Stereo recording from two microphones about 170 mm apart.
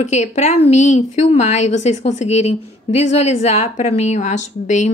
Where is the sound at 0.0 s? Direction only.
45° left (ahead or behind).